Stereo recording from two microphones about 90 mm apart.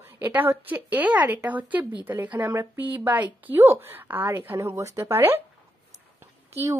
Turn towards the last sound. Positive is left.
turn(degrees=-30)  # may be behind; listen again after turning